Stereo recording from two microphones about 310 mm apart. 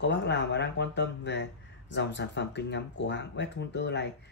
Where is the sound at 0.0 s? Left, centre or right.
Left.